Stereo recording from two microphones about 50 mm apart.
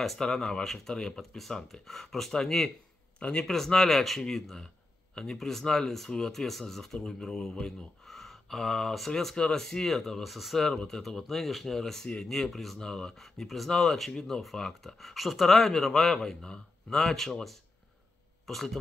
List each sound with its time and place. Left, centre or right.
0.2 s speech: centre
3.2 s speech: left
3.4 s speech: centre
10.6 s speech: centre
16.4 s a man's voice: centre